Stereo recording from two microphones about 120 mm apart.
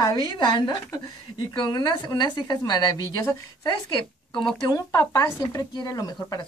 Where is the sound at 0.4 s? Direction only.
35° left (ahead or behind).